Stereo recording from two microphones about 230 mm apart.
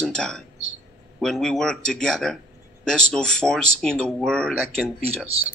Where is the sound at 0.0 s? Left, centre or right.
Centre.